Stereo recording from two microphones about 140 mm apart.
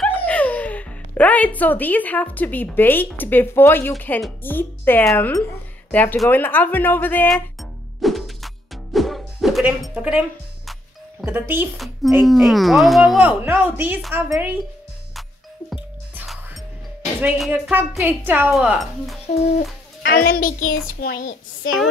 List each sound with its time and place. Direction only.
0.0 s speech: 10° left (ahead or behind)
8.0 s music: centre (ahead or behind)
9.9 s a woman's voice: 10° right (ahead or behind)
11.2 s a woman's voice: 15° right (ahead or behind)
11.7 s speech: centre (ahead or behind)
13.4 s a woman's voice: 15° right (ahead or behind)
15.7 s music: 5° right (ahead or behind)
17.2 s a woman's voice: 10° right (ahead or behind)
19.2 s speech: 50° left (ahead or behind)
20.1 s a child's voice: 90° left
21.0 s speech: 65° left (ahead or behind)